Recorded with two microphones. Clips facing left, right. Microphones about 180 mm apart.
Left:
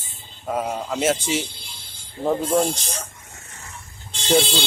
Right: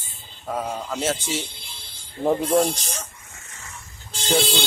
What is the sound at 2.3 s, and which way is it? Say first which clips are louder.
Speech: right 1 dB; centre (ahead or behind).